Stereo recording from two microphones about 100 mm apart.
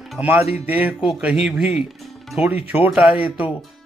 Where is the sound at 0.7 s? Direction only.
15° right (ahead or behind).